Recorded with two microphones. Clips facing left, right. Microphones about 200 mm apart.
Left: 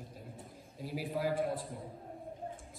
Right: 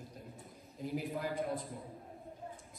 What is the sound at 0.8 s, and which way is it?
Speech, centre (ahead or behind).